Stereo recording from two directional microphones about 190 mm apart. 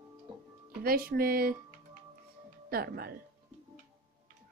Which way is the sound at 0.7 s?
50° right (ahead or behind).